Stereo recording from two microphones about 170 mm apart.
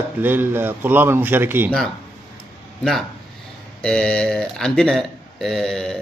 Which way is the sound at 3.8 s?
5° left (ahead or behind).